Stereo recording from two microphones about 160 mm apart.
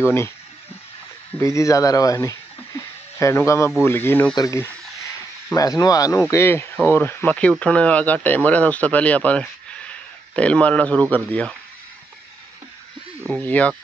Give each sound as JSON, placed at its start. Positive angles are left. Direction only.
{"t": 1.4, "sound": "speech", "side_deg": 20}
{"t": 4.4, "sound": "a sound", "side_deg": 20}
{"t": 6.2, "sound": "speech", "side_deg": 15}
{"t": 13.3, "sound": "speech", "side_deg": 10}